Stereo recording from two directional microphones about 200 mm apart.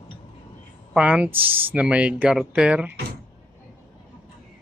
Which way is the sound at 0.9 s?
5° right (ahead or behind).